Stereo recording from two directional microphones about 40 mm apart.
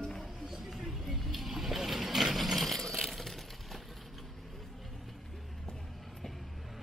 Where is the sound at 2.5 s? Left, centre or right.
Centre.